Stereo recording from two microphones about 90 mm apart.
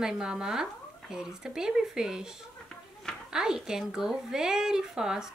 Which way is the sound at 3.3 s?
5° right (ahead or behind).